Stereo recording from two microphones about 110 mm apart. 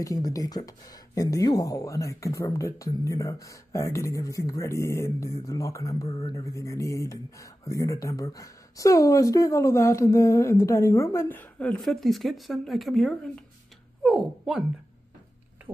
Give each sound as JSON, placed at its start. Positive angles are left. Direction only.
{"t": 0.0, "sound": "speech", "side_deg": 30}